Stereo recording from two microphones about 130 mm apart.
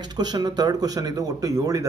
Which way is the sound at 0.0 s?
30° right (ahead or behind).